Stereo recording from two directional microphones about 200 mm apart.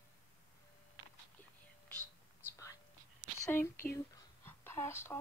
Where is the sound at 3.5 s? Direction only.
10° left (ahead or behind).